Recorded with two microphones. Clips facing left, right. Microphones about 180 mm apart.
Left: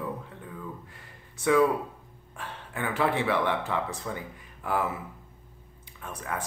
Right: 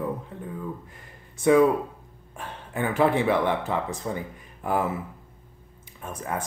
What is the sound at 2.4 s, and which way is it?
Speech, 15° right (ahead or behind).